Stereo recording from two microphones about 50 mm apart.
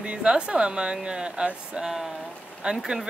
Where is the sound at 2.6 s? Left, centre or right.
Centre.